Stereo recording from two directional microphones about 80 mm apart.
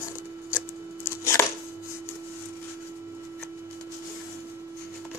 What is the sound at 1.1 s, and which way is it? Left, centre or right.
Chopping, left.